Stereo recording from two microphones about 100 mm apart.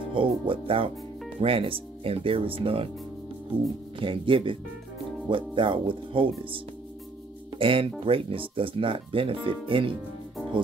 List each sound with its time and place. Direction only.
0.1 s speech: 60° right (ahead or behind)
4.0 s speech: 60° right (ahead or behind)
7.5 s speech: 60° right (ahead or behind)